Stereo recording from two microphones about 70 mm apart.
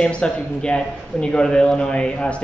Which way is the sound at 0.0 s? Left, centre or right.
Centre.